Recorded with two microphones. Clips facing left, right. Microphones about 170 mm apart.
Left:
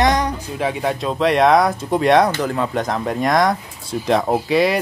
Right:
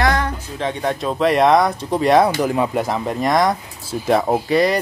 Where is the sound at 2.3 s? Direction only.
10° right (ahead or behind).